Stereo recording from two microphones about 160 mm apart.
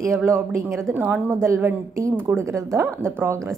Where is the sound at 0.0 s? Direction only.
15° right (ahead or behind).